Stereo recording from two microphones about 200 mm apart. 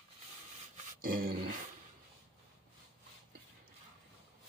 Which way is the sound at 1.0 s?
45° right (ahead or behind).